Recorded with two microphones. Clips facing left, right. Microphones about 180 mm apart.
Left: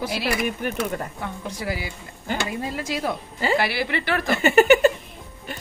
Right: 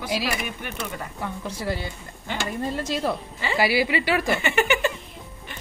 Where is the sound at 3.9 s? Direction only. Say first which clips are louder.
Right 2 dB; 10° right (ahead or behind).